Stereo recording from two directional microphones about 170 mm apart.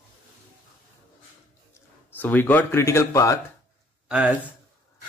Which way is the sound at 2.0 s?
10° left (ahead or behind).